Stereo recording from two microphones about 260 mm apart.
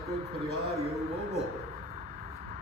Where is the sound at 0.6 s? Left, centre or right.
Right.